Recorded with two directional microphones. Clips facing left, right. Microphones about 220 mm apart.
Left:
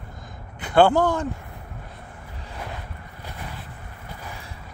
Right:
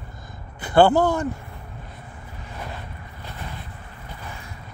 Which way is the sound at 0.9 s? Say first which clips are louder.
Right 1 dB; 15° left (ahead or behind).